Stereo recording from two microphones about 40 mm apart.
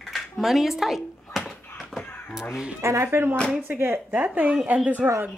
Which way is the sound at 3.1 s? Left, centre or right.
Right.